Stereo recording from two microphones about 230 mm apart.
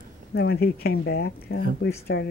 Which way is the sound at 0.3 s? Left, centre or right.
Left.